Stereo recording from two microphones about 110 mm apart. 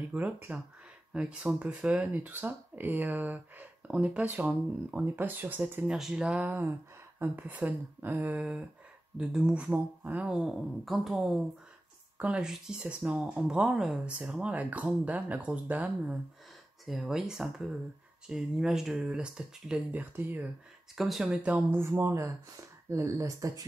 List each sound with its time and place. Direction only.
0.1 s speech: 15° right (ahead or behind)
5.9 s speech: 5° right (ahead or behind)
10.4 s a woman's voice: 5° right (ahead or behind)
16.8 s a woman's voice: centre (ahead or behind)
20.9 s speech: 5° right (ahead or behind); by 23.6 s 30° right (ahead or behind)